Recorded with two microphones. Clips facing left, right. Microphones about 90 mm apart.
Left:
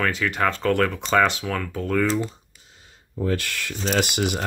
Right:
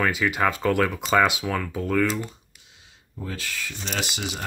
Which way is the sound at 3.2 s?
65° left (ahead or behind).